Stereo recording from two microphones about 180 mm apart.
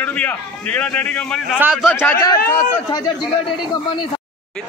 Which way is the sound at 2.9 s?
25° left (ahead or behind).